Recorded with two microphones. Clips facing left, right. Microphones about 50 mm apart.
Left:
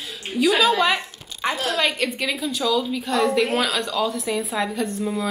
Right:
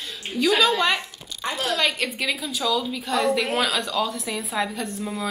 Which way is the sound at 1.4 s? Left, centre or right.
Left.